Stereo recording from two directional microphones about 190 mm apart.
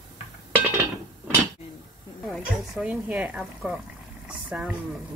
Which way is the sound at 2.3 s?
5° right (ahead or behind).